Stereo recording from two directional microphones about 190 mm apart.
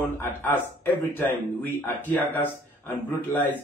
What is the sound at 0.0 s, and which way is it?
Speech, 10° left (ahead or behind).